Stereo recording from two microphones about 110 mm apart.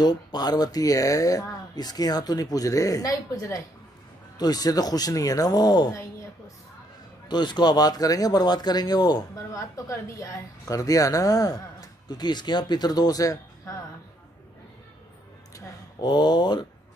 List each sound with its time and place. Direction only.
0.0 s speech: 40° left (ahead or behind)
7.2 s speech: 40° left (ahead or behind)
15.5 s a sound: 35° left (ahead or behind)